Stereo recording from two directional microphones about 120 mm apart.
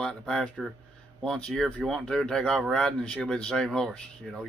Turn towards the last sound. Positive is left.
turn(degrees=5)  # may be behind; listen again after turning